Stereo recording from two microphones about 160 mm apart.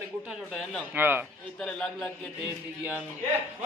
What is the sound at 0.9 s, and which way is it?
Speech, 10° right (ahead or behind).